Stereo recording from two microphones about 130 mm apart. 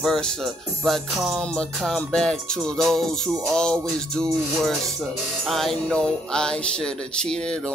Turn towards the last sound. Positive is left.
turn(degrees=5)  # may be behind; listen again after turning